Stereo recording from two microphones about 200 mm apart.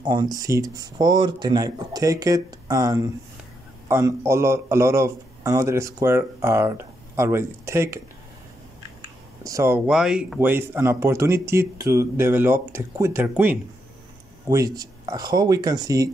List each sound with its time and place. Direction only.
0.0 s speech: 20° right (ahead or behind)
9.4 s speech: 15° right (ahead or behind)
9.8 s speech: 5° right (ahead or behind)